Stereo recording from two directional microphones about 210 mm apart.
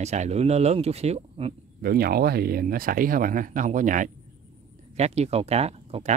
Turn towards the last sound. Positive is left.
turn(degrees=-30)  # may be behind; listen again after turning